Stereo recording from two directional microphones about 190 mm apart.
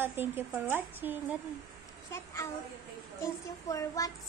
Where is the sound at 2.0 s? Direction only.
15° left (ahead or behind).